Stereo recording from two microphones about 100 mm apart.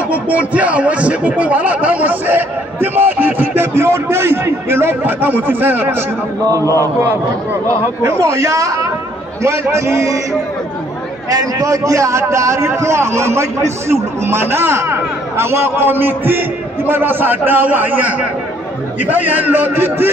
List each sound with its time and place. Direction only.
0.1 s a man's voice: 15° right (ahead or behind)
8.0 s speech: 25° right (ahead or behind)
11.2 s a man's voice: 35° right (ahead or behind); by 20.1 s 20° right (ahead or behind)